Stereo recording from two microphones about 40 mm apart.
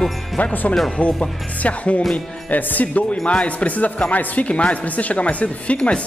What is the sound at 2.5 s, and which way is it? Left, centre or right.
Speech, left.